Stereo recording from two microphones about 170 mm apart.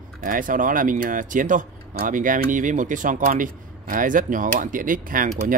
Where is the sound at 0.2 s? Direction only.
55° right (ahead or behind).